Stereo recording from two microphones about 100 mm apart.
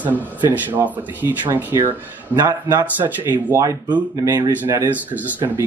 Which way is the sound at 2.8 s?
20° right (ahead or behind).